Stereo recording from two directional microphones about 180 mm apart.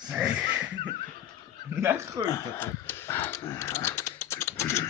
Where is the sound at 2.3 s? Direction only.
15° left (ahead or behind).